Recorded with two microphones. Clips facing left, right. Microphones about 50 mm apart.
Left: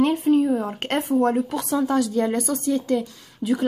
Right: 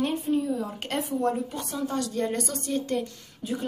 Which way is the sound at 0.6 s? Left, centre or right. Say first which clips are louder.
Left 5 dB; left.